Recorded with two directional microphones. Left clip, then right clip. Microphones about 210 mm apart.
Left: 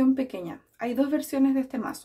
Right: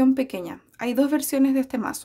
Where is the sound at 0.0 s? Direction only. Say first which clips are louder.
Right 3 dB; 45° right (ahead or behind).